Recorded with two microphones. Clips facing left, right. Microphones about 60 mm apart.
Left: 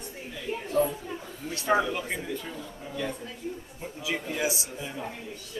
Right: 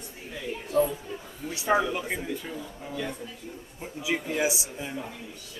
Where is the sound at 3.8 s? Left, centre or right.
Centre.